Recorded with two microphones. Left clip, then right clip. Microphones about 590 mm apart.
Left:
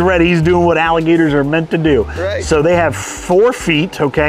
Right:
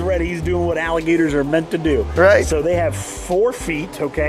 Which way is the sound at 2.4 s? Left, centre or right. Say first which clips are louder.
Left 6 dB; left.